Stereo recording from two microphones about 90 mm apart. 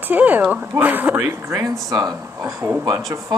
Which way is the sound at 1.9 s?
45° right (ahead or behind).